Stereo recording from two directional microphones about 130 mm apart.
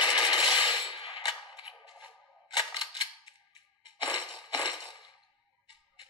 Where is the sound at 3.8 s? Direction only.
35° left (ahead or behind).